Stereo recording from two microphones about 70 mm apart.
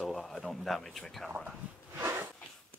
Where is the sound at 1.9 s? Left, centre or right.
Right.